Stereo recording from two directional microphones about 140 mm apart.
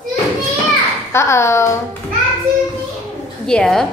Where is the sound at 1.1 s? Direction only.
20° left (ahead or behind).